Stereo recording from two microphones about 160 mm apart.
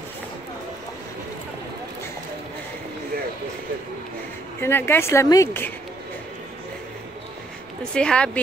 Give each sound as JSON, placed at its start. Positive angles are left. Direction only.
{"t": 4.6, "sound": "speech", "side_deg": 15}
{"t": 7.9, "sound": "speech", "side_deg": 5}